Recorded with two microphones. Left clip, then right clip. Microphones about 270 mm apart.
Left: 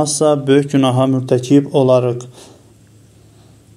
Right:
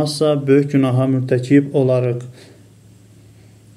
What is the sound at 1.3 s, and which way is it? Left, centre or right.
Speech, centre.